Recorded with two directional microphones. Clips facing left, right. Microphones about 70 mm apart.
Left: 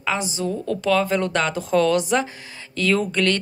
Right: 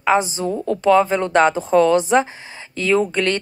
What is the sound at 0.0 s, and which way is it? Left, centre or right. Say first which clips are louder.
A woman's voice: right 7 dB; right.